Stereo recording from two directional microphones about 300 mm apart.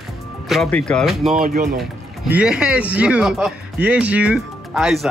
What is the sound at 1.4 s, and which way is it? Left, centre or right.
Speech, right.